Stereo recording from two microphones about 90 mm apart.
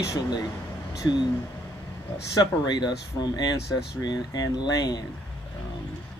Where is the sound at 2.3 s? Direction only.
50° left (ahead or behind).